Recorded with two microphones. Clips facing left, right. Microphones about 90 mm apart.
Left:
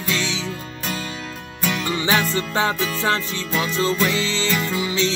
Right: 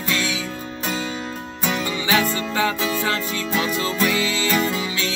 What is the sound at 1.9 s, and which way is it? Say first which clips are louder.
Music: left 1 dB; 35° left (ahead or behind).